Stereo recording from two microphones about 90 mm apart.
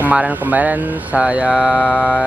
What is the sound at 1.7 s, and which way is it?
Music, 20° left (ahead or behind).